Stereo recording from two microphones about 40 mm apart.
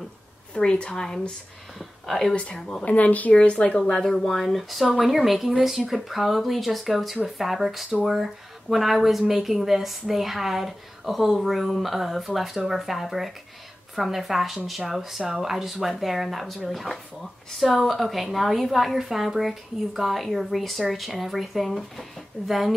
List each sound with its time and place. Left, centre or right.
0.6 s speech: centre
1.8 s a sound: centre
2.3 s speech: left
2.8 s speech: left
3.4 s speech: left
3.9 s speech: centre
8.6 s speech: centre